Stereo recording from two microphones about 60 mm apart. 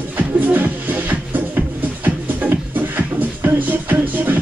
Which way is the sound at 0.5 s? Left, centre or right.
Right.